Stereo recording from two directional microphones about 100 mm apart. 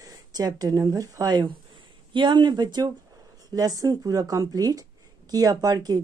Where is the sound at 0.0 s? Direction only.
40° right (ahead or behind).